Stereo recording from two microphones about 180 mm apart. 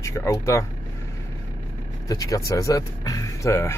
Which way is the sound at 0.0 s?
15° left (ahead or behind).